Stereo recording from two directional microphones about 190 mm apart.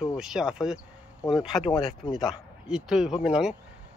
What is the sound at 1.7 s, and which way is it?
Speech, 25° left (ahead or behind).